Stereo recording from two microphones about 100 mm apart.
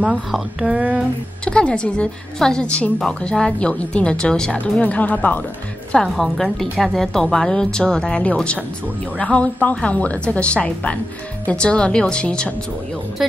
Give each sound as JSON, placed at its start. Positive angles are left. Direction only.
{"t": 0.0, "sound": "speech", "side_deg": -5}
{"t": 1.4, "sound": "a woman's voice", "side_deg": 10}
{"t": 6.0, "sound": "a woman's voice", "side_deg": 0}